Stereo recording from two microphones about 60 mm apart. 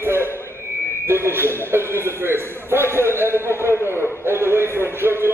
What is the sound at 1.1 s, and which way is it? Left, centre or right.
A man's voice, right.